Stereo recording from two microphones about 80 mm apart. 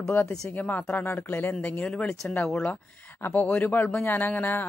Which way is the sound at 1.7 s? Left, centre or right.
Centre.